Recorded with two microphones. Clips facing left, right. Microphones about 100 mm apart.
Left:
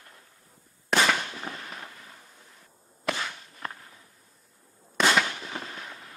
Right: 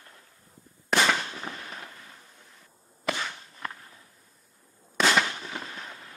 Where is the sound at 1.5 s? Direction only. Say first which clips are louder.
Left 1 dB; 35° right (ahead or behind).